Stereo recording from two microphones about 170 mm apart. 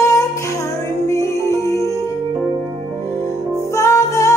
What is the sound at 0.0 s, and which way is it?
Music, 20° left (ahead or behind).